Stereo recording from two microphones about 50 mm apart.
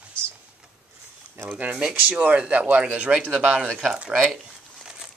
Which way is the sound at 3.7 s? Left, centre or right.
Centre.